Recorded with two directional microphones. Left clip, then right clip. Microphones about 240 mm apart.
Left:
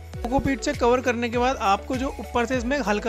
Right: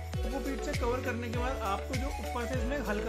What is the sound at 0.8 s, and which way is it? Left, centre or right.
Speech, left.